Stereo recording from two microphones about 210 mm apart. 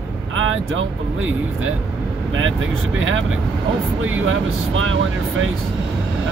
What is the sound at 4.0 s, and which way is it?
Speech, 70° right (ahead or behind).